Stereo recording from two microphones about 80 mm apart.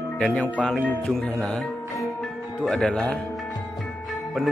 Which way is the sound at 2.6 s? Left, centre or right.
Centre.